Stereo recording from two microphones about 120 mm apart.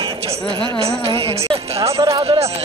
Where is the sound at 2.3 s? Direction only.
60° right (ahead or behind).